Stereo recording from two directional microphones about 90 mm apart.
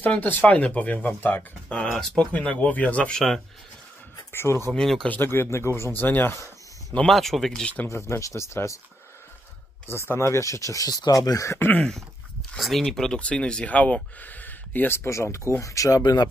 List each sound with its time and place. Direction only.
0.0 s speech: 20° left (ahead or behind)
1.9 s speech: 5° left (ahead or behind)
4.3 s speech: 25° left (ahead or behind)
4.7 s speech: 5° left (ahead or behind)
5.0 s speech: 20° left (ahead or behind)
6.9 s speech: 15° left (ahead or behind)
7.2 s speech: centre (ahead or behind)
7.9 s speech: 35° left (ahead or behind)
9.8 s speech: 25° left (ahead or behind)
11.8 s speech: 5° left (ahead or behind); by 15.0 s 20° left (ahead or behind)
15.0 s speech: 30° left (ahead or behind)